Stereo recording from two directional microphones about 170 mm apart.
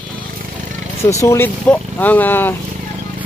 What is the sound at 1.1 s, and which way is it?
Speech, 15° left (ahead or behind).